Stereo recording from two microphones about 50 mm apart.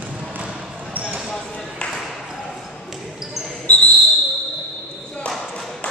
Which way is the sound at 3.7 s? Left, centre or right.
Left.